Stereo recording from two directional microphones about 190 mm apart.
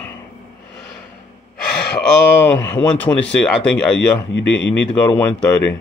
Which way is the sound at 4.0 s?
70° left (ahead or behind).